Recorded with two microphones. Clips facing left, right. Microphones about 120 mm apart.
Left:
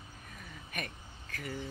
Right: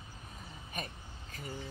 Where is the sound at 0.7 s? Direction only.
25° right (ahead or behind).